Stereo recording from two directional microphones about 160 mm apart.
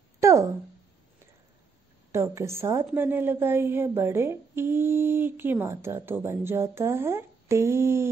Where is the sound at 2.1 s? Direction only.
15° right (ahead or behind).